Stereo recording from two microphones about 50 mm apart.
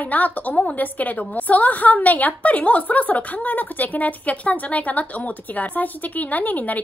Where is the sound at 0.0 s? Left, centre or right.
Left.